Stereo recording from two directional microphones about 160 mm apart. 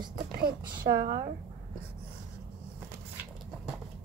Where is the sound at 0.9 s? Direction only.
40° right (ahead or behind).